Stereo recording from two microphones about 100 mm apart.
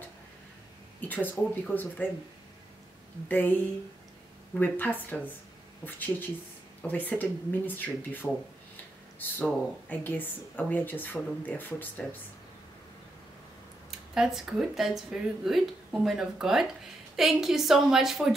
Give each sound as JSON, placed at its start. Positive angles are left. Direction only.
{"t": 1.0, "sound": "speech", "side_deg": 20}
{"t": 3.3, "sound": "speech", "side_deg": 15}
{"t": 4.6, "sound": "speech", "side_deg": 20}
{"t": 13.8, "sound": "speech", "side_deg": -5}